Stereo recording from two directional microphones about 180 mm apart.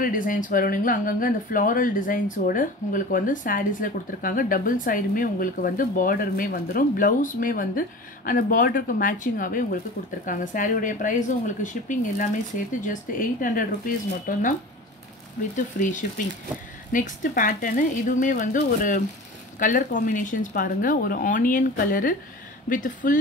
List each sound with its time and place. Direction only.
0.0 s speech: 50° left (ahead or behind)
15.5 s speech: 45° left (ahead or behind)